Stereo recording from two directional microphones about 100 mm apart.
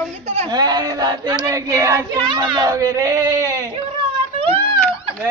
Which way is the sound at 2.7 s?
30° right (ahead or behind).